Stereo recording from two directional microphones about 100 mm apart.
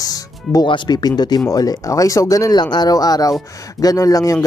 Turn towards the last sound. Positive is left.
turn(degrees=35)  # may be behind; listen again after turning